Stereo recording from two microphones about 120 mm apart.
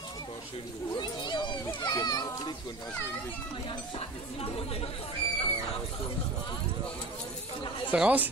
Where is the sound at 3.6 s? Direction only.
50° left (ahead or behind).